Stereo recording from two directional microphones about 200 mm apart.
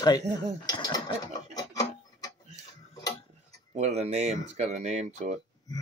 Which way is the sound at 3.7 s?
35° right (ahead or behind).